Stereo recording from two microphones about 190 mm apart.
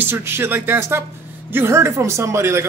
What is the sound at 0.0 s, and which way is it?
A man's voice, 15° right (ahead or behind).